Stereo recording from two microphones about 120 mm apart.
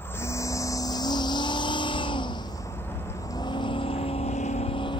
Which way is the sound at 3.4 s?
40° left (ahead or behind).